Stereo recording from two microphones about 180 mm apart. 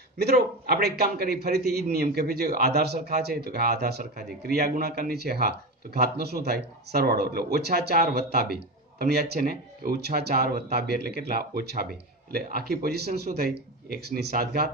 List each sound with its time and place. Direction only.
0.2 s a man's voice: 65° right (ahead or behind)